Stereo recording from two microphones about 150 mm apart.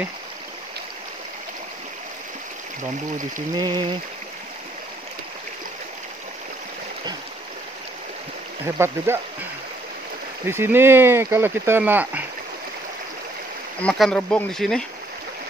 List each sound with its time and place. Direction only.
3.5 s speech: 30° right (ahead or behind)
8.7 s speech: 15° right (ahead or behind)
13.7 s speech: 5° left (ahead or behind)